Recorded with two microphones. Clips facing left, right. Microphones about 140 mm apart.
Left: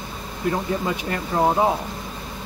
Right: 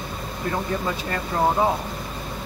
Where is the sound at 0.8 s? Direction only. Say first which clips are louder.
Left 1 dB; 15° left (ahead or behind).